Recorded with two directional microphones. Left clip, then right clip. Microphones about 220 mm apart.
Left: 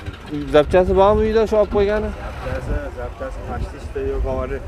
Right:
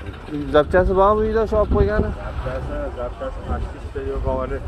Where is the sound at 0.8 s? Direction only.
30° left (ahead or behind).